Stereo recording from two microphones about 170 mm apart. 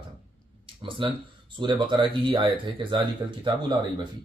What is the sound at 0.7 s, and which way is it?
Speech, 30° right (ahead or behind).